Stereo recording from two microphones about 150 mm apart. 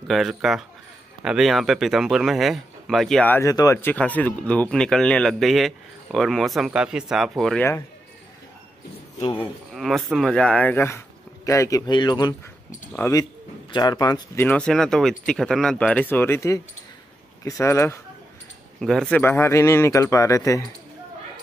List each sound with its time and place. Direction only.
0.1 s speech: centre (ahead or behind)
9.7 s a man's voice: centre (ahead or behind); by 14.4 s 25° left (ahead or behind)
14.4 s speech: 10° left (ahead or behind)
18.8 s speech: centre (ahead or behind); by 20.6 s 20° left (ahead or behind)